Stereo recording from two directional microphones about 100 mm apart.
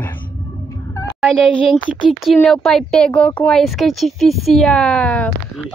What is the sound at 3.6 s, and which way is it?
A woman's voice, centre (ahead or behind).